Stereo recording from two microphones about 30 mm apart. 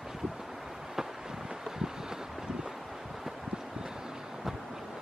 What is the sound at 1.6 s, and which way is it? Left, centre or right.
Vehicle, centre.